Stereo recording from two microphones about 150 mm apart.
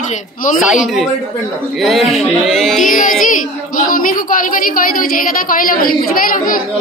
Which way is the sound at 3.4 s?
65° left (ahead or behind).